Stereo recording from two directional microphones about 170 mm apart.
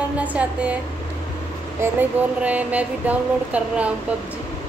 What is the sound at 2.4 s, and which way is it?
Speech, 10° right (ahead or behind).